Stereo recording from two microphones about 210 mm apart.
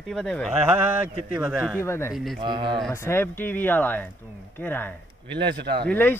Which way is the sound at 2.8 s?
10° left (ahead or behind).